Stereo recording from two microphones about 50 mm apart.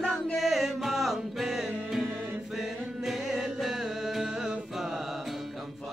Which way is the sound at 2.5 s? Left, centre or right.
Centre.